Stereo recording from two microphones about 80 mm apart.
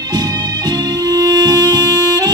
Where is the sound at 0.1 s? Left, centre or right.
Right.